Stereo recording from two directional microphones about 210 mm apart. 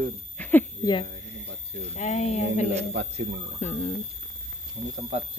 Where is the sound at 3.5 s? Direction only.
30° left (ahead or behind).